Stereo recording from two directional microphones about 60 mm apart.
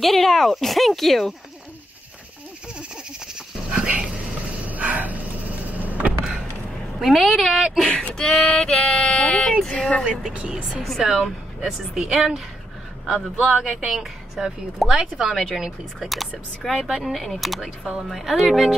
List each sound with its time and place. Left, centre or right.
0.0 s speech: centre
3.3 s goat: centre
4.6 s dog: right
5.7 s vehicle: right
7.0 s speech: centre
8.1 s speech: centre
10.3 s speech: right
10.7 s speech: centre